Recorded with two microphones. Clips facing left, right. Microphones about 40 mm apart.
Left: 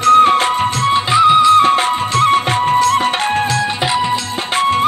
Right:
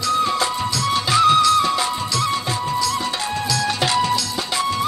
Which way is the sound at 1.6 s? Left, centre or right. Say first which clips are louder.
Left 8 dB; left.